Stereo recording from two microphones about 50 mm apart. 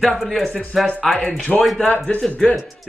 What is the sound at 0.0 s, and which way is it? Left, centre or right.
Speech, centre.